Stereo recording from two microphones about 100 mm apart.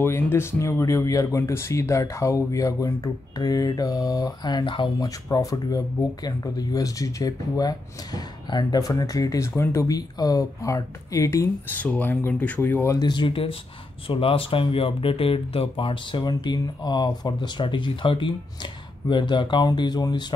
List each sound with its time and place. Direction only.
0.0 s speech: 25° left (ahead or behind); by 4.9 s 55° left (ahead or behind)
5.0 s speech: 35° left (ahead or behind)
9.6 s speech: 25° left (ahead or behind)
9.8 s speech: 40° left (ahead or behind)
11.6 s speech: 15° left (ahead or behind)
13.0 s speech: 50° left (ahead or behind)